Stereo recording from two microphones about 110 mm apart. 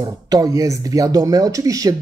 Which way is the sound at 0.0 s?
35° right (ahead or behind).